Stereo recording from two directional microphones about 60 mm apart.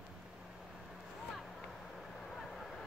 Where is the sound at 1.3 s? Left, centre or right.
Centre.